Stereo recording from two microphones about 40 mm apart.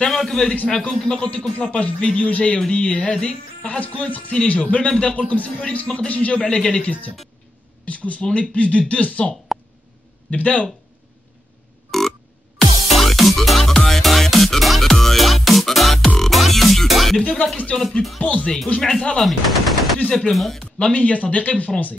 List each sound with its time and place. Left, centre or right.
0.0 s a man's voice: centre
1.7 s speech: left
3.6 s speech: left
6.4 s speech: left
7.8 s speech: left
10.3 s speech: left
11.9 s a sound: centre
12.5 s music: centre
17.7 s speech: centre
18.2 s speech: left
18.8 s speech: centre
19.2 s machine gun: centre
20.2 s music: centre
20.9 s speech: left